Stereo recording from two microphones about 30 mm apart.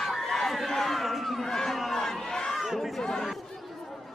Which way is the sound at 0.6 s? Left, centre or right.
Centre.